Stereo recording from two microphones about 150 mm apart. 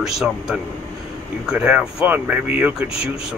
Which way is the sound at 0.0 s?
Centre (ahead or behind).